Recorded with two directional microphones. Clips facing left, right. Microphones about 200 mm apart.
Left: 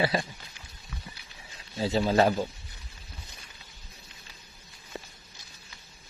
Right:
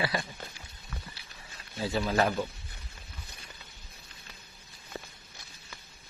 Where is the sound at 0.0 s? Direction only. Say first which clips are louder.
Left 5 dB; 25° left (ahead or behind).